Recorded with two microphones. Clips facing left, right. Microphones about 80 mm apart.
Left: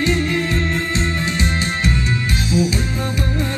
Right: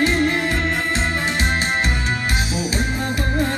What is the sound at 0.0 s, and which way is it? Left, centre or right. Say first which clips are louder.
Music: right 1 dB; right.